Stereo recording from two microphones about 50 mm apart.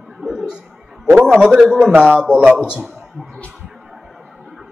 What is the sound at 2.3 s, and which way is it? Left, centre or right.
Speech, centre.